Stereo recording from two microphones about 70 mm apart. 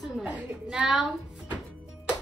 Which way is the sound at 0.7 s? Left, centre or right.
Centre.